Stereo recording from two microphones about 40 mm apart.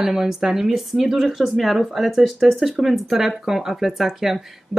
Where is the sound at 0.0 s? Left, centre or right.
Centre.